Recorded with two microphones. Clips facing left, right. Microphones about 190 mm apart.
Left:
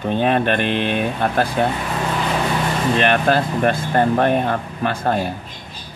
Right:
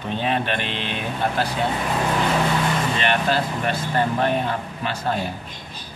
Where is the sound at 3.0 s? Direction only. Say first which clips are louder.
Left 7 dB; 55° left (ahead or behind).